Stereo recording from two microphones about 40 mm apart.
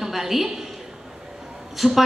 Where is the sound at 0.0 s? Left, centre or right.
Centre.